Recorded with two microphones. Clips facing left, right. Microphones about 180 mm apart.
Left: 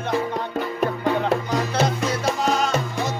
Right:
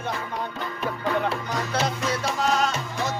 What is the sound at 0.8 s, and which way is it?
Music, 45° left (ahead or behind).